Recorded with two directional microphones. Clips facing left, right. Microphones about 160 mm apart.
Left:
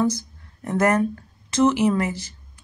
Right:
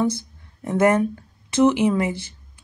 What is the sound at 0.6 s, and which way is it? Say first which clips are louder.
A woman's voice: right 2 dB; 10° right (ahead or behind).